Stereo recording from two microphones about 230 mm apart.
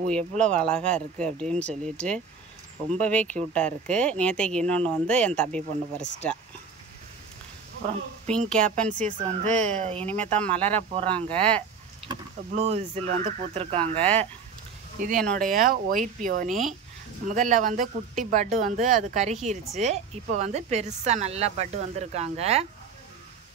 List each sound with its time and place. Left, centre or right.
0.4 s speech: centre
8.3 s speech: centre
8.5 s speech: right
10.3 s speech: centre
10.8 s a woman's voice: right
13.9 s speech: centre
15.0 s a woman's voice: right